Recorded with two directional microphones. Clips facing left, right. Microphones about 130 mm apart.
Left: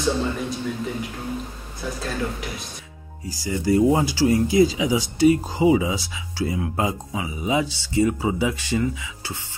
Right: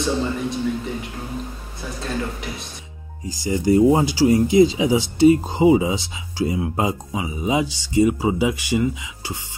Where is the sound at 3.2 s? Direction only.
20° right (ahead or behind).